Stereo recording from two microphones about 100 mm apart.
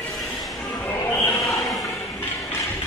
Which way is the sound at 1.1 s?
20° left (ahead or behind).